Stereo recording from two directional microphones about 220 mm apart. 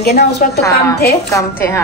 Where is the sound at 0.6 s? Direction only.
15° left (ahead or behind).